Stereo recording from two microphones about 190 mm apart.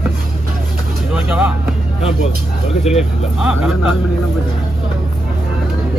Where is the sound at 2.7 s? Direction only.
35° left (ahead or behind).